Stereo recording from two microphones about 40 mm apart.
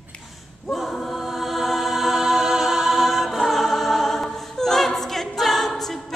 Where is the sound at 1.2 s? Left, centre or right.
Centre.